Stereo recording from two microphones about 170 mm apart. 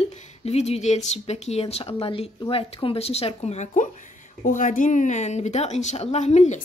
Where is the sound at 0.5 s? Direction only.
40° left (ahead or behind).